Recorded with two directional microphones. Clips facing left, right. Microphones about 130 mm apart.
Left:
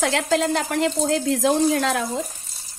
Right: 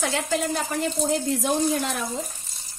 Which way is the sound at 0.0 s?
90° left.